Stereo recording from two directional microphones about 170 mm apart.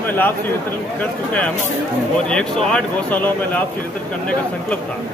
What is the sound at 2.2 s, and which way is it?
A man's voice, 5° left (ahead or behind).